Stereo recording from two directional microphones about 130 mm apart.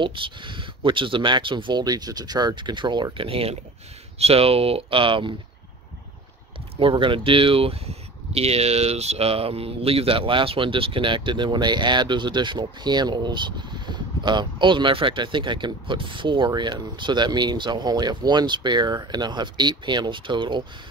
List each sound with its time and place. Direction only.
0.0 s speech: 40° right (ahead or behind)
6.8 s speech: 40° right (ahead or behind)